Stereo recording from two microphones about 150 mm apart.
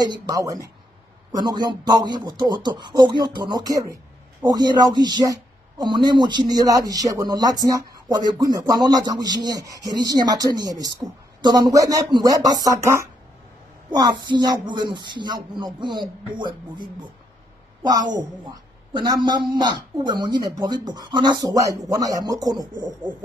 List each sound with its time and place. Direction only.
0.0 s speech: 25° right (ahead or behind)